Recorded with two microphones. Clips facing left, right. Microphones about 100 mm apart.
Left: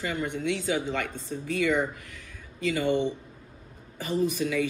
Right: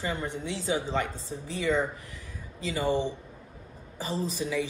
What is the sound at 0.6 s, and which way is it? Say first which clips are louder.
Speech: even; 20° right (ahead or behind).